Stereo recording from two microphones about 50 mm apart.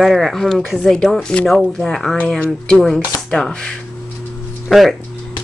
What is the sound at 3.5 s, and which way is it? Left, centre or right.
Speech, centre.